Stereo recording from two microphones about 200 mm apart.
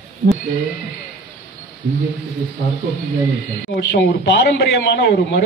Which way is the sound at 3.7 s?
55° left (ahead or behind).